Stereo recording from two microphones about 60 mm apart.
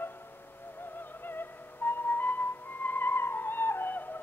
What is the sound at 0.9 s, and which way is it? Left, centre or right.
Music, left.